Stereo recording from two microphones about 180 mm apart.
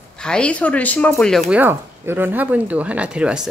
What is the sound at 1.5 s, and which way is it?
Speech, 10° right (ahead or behind).